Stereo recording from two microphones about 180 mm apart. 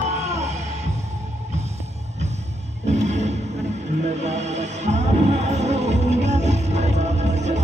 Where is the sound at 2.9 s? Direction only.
40° right (ahead or behind).